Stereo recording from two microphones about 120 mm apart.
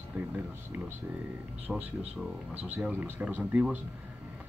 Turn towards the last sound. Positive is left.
turn(degrees=-10)  # may be behind; listen again after turning